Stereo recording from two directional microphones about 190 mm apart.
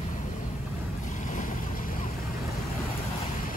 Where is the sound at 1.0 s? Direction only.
40° left (ahead or behind).